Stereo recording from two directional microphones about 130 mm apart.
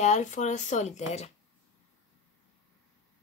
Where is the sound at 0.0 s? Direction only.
70° left (ahead or behind).